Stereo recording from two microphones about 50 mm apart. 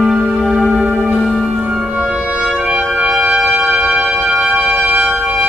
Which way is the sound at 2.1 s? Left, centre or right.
Right.